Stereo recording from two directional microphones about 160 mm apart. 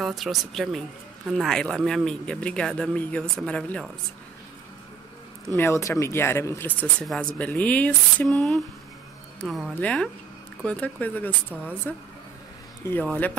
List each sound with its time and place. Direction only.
0.0 s speech: centre (ahead or behind)
5.6 s speech: 15° left (ahead or behind)
12.8 s speech: 10° left (ahead or behind)